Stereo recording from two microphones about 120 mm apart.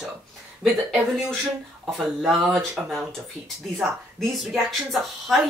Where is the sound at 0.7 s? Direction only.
Centre (ahead or behind).